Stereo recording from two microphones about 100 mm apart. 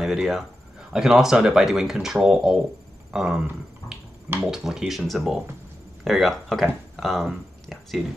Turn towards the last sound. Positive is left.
turn(degrees=0)  # may be behind; listen again after turning